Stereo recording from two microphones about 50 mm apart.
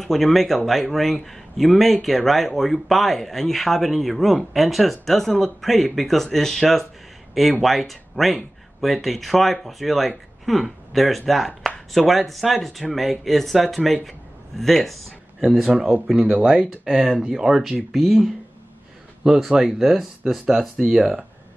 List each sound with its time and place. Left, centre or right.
0.0 s speech: centre
15.4 s speech: centre
15.7 s speech: right; by 20.7 s centre
21.0 s speech: centre